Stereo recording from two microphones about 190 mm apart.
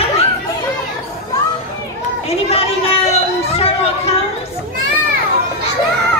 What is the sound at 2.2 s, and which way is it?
Speech, 30° left (ahead or behind).